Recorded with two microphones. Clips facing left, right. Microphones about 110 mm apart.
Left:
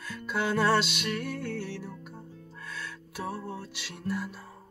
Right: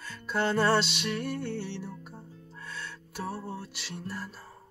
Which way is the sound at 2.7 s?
5° right (ahead or behind).